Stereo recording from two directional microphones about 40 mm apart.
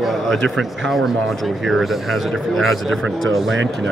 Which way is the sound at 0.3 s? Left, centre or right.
Centre.